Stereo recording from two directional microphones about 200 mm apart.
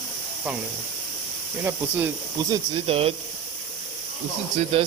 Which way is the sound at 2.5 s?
30° right (ahead or behind).